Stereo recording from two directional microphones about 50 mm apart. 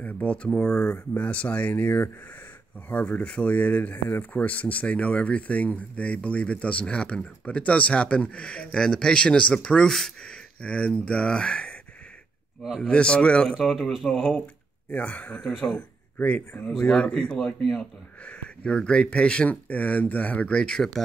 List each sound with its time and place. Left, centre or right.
0.0 s speech: left; by 10.3 s centre
10.3 s speech: left
12.8 s speech: centre
13.6 s a man's voice: centre
14.9 s speech: left
19.7 s speech: left
20.5 s speech: centre